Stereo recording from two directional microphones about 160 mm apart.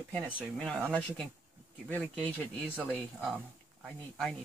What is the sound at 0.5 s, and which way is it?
Speech, 5° left (ahead or behind).